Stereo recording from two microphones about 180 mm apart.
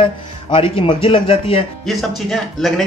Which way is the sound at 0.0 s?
30° left (ahead or behind).